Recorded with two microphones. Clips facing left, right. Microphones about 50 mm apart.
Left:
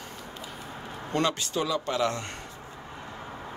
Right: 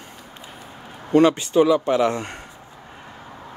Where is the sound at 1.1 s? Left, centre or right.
Right.